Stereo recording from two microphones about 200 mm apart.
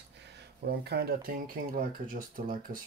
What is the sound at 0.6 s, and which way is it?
Speech, 55° right (ahead or behind).